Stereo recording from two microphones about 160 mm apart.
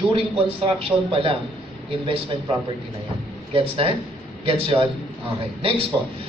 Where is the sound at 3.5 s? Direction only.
30° right (ahead or behind).